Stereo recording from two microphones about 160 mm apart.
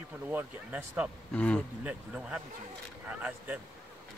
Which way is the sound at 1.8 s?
10° right (ahead or behind).